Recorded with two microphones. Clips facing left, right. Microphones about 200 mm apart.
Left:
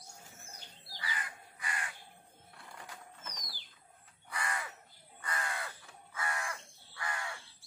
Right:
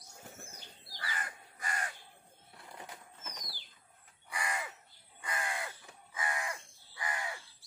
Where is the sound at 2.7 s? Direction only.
20° right (ahead or behind).